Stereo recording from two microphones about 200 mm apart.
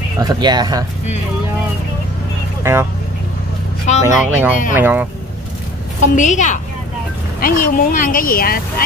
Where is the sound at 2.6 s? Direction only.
15° right (ahead or behind).